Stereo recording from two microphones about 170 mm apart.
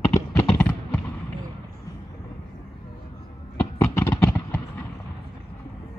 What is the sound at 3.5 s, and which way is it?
Horse, 10° left (ahead or behind).